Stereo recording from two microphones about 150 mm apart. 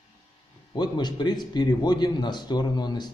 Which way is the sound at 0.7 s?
30° left (ahead or behind).